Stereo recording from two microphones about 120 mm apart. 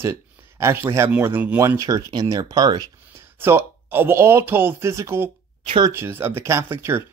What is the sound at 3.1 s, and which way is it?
Speech, 20° right (ahead or behind).